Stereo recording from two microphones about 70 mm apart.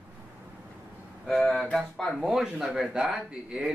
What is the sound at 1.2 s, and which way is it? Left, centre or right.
Speech, centre.